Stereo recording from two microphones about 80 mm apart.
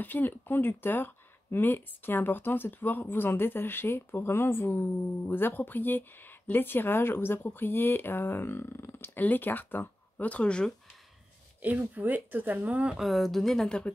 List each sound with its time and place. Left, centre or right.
0.0 s speech: left
11.6 s speech: centre
13.0 s a woman's voice: centre